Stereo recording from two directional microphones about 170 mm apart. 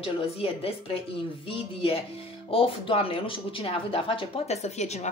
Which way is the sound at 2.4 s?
35° left (ahead or behind).